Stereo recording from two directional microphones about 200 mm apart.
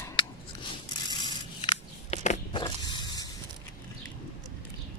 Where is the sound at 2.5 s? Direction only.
25° left (ahead or behind).